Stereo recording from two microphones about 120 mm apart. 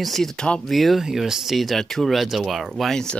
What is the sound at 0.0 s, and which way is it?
Speech, centre (ahead or behind).